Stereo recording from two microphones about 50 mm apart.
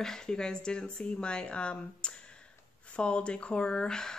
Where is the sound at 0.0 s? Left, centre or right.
Centre.